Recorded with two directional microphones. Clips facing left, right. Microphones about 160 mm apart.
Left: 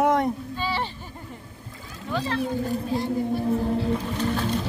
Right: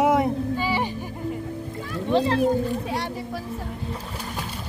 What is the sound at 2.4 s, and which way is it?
Speech, 80° right.